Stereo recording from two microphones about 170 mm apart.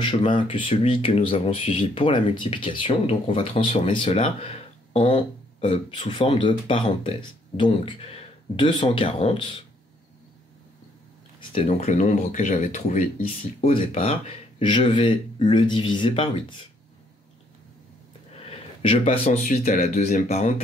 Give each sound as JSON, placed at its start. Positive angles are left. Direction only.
{"t": 0.0, "sound": "speech", "side_deg": 30}
{"t": 11.5, "sound": "speech", "side_deg": 35}
{"t": 18.4, "sound": "a sound", "side_deg": 35}
{"t": 19.7, "sound": "speech", "side_deg": 40}